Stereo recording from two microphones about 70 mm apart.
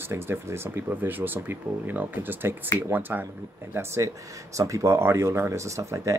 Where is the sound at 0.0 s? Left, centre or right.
Right.